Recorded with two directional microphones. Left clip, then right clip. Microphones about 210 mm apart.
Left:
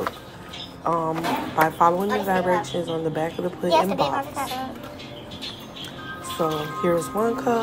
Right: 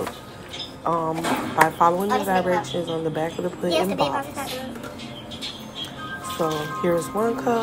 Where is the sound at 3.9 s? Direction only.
15° left (ahead or behind).